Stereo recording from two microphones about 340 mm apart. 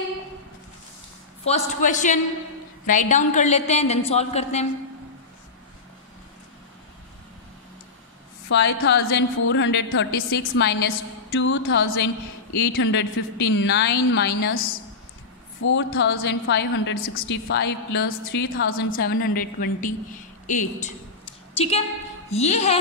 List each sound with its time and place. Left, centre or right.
1.4 s a woman's voice: centre
8.5 s a woman's voice: left
15.7 s a woman's voice: left